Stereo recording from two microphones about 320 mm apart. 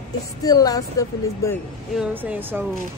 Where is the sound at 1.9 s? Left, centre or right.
Centre.